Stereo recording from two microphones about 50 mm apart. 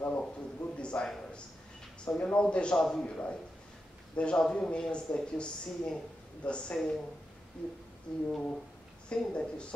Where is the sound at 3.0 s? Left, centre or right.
Centre.